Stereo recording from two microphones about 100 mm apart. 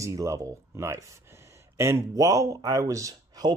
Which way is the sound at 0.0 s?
30° right (ahead or behind).